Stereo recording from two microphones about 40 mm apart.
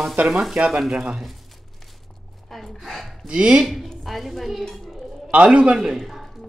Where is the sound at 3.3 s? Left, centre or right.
Right.